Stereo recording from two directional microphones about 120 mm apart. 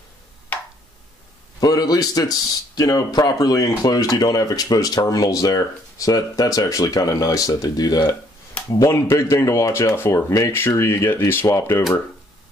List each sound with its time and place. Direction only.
1.6 s speech: 35° left (ahead or behind)